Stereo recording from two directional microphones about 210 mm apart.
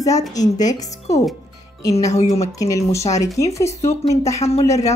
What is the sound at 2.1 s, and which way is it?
Speech, 30° left (ahead or behind).